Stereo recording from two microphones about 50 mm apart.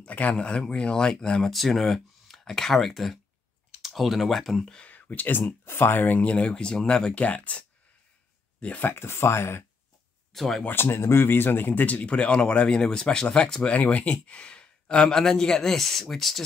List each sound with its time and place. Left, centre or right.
0.0 s speech: left
1.5 s speech: centre
4.8 s speech: left
5.4 s speech: left
6.5 s speech: centre
7.2 s speech: left
8.8 s speech: left
10.3 s speech: centre
10.7 s speech: left; by 16.3 s centre